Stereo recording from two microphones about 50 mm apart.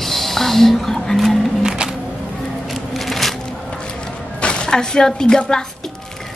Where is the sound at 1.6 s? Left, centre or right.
Centre.